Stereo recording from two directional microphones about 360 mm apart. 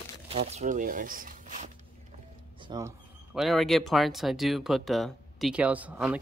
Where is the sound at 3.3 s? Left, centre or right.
Centre.